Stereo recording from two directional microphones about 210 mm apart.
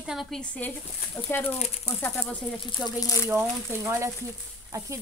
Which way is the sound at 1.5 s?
30° left (ahead or behind).